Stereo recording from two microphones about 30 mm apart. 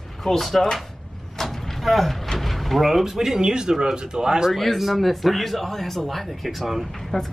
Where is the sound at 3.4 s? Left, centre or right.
Right.